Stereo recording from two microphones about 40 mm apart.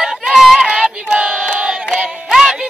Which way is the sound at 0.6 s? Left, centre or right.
Right.